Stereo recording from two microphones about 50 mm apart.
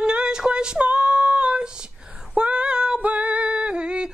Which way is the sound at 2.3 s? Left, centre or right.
Right.